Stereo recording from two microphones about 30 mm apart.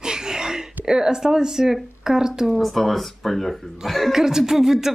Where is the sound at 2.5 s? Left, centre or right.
Centre.